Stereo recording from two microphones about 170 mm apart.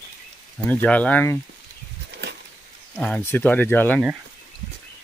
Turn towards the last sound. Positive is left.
turn(degrees=10)  # may be behind; listen again after turning